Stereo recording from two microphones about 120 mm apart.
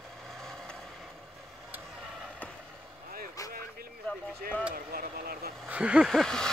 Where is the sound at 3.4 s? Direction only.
25° left (ahead or behind).